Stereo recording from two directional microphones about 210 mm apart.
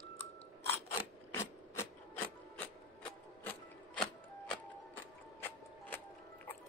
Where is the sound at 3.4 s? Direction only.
5° left (ahead or behind).